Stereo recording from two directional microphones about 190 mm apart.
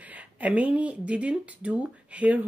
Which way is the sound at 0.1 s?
10° right (ahead or behind).